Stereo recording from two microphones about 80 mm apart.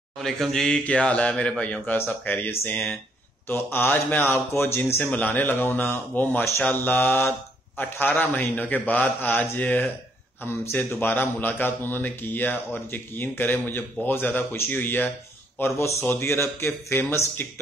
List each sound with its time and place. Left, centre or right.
0.2 s a man's voice: centre; by 15.0 s left
15.6 s a man's voice: left